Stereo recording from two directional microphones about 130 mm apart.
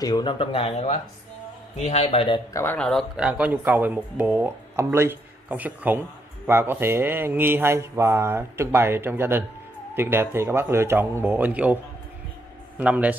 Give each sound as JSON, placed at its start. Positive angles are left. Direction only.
{"t": 0.0, "sound": "speech", "side_deg": 35}
{"t": 2.5, "sound": "speech", "side_deg": 15}
{"t": 2.8, "sound": "speech", "side_deg": 5}
{"t": 3.2, "sound": "speech", "side_deg": -10}